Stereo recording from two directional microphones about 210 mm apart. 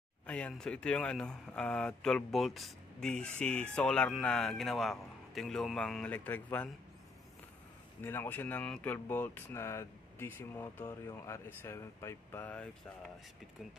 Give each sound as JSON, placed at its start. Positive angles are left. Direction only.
{"t": 0.3, "sound": "speech", "side_deg": 5}
{"t": 8.0, "sound": "speech", "side_deg": 10}